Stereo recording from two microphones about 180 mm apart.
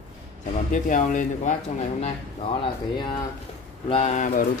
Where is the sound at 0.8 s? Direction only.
45° left (ahead or behind).